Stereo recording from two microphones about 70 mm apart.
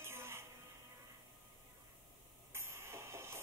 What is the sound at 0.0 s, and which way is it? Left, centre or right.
Music, right.